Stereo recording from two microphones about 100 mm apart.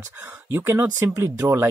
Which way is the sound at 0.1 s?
20° right (ahead or behind).